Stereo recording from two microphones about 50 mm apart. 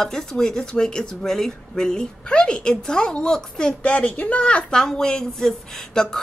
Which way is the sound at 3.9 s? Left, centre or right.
Left.